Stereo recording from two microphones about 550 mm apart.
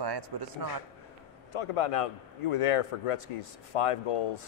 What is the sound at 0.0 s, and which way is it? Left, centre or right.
Speech, right.